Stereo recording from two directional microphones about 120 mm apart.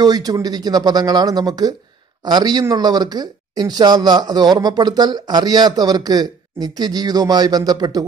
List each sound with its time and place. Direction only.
0.0 s speech: 30° right (ahead or behind)